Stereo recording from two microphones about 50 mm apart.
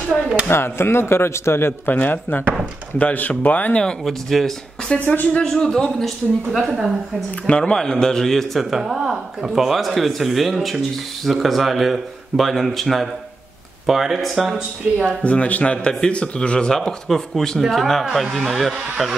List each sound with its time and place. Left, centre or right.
0.5 s speech: left
2.0 s speech: left
4.0 s speech: centre
4.9 s speech: left
5.6 s speech: centre
6.7 s speech: centre
7.4 s a man's voice: centre
7.7 s speech: centre
8.6 s speech: centre
15.2 s a man's voice: left; by 19.1 s centre